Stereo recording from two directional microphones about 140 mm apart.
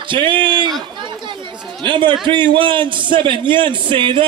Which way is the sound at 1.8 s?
35° right (ahead or behind).